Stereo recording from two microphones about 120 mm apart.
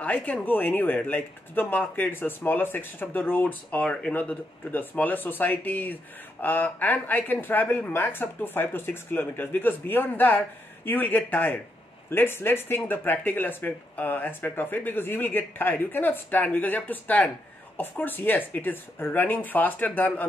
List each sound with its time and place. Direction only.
0.0 s speech: 15° left (ahead or behind)